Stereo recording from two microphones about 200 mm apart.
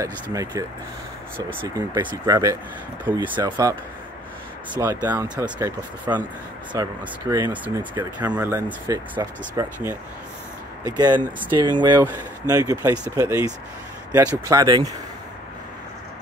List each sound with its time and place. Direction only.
0.0 s speech: 15° right (ahead or behind)
2.0 s speech: 20° right (ahead or behind)
4.7 s speech: 10° right (ahead or behind)
11.0 s speech: 20° right (ahead or behind)